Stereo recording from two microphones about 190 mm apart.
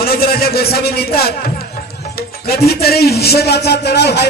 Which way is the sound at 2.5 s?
55° left (ahead or behind).